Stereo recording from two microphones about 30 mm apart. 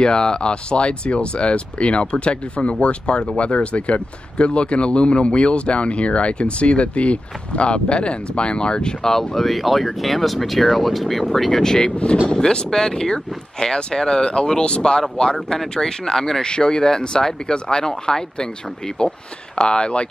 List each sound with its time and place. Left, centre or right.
0.0 s speech: left
9.3 s speech: centre
11.8 s speech: left
12.3 s speech: left
16.1 s speech: centre
16.4 s speech: left